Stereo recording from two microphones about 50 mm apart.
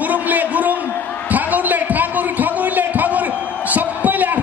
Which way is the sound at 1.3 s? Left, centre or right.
Right.